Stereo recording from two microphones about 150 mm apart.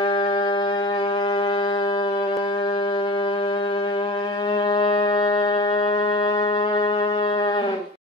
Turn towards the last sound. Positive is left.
turn(degrees=35)  # may be behind; listen again after turning